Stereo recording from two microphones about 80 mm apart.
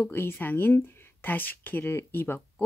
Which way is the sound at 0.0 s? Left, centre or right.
Left.